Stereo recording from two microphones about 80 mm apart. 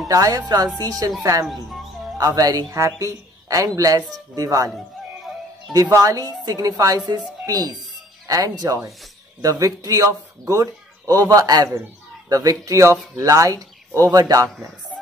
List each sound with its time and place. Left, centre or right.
0.1 s speech: right
6.0 s speech: right